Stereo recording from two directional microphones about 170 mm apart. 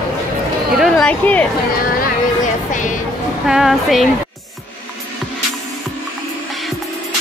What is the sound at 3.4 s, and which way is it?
Speech, 5° right (ahead or behind).